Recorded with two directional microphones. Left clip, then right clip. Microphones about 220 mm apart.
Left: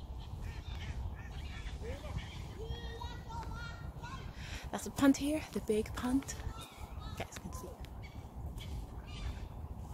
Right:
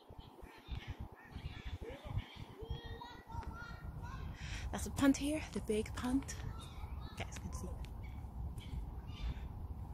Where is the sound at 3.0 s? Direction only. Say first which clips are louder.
Left 5 dB; 40° right (ahead or behind).